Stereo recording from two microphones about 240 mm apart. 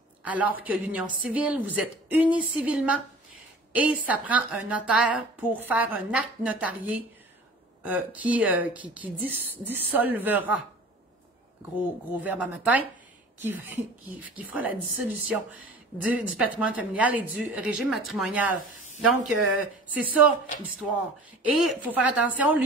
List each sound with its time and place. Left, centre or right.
0.2 s a woman's voice: centre
12.2 s a woman's voice: centre
21.6 s a woman's voice: centre